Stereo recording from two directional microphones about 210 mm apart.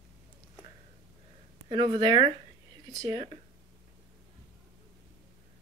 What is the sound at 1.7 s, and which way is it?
Speech, 20° right (ahead or behind).